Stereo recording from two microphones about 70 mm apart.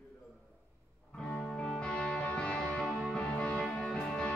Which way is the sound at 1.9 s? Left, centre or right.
Centre.